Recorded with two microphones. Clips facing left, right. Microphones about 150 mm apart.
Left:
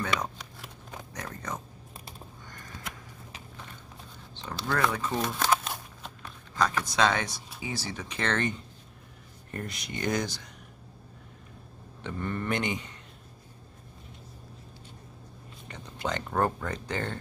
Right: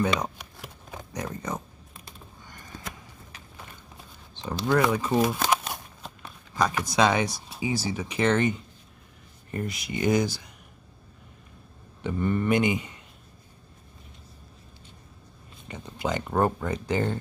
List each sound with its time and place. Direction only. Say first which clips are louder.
0.0 s speech: right 5 dB; 15° right (ahead or behind)
4.4 s speech: right 5 dB; 15° right (ahead or behind)
6.0 s a sound: right 1 dB; 10° right (ahead or behind)
7.6 s speech: right 8 dB; 10° right (ahead or behind)
12.0 s speech: right 7 dB; 10° right (ahead or behind)
15.7 s speech: right 4 dB; 10° right (ahead or behind)